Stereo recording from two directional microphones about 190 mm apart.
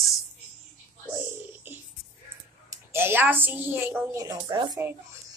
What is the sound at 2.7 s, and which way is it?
A woman's voice, 10° right (ahead or behind).